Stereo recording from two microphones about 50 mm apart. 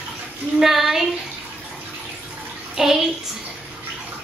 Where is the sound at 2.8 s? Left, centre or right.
Centre.